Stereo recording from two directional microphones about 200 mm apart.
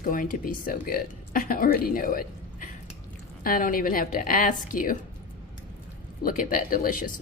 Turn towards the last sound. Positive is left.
turn(degrees=40)  # may be behind; listen again after turning